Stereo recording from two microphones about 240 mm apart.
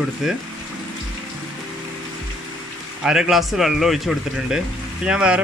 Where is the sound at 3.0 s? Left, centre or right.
Centre.